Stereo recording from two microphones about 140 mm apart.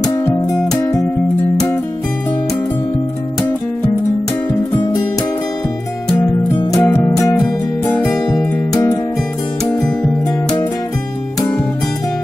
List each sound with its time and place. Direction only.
0.0 s music: 20° left (ahead or behind)
6.0 s music: 30° left (ahead or behind)